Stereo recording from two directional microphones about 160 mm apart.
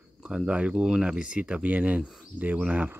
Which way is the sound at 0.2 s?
5° right (ahead or behind).